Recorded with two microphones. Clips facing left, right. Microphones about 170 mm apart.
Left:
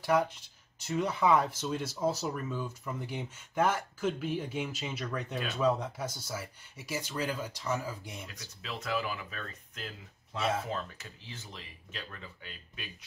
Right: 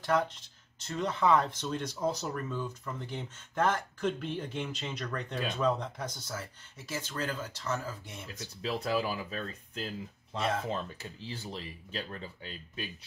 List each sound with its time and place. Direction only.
0.0 s speech: 10° left (ahead or behind)
8.4 s speech: 35° right (ahead or behind)